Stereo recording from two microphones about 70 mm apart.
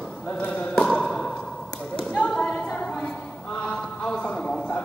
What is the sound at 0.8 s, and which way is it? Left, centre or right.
Sigh, centre.